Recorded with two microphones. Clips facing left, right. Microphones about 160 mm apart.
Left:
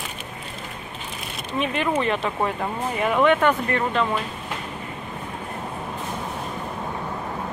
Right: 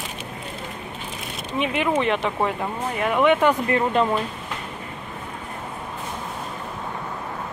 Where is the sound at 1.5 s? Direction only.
10° right (ahead or behind).